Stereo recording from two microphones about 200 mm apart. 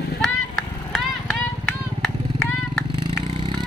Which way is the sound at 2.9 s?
25° right (ahead or behind).